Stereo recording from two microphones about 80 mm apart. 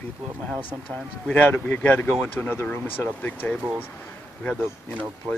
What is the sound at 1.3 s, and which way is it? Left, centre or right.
Speech, left.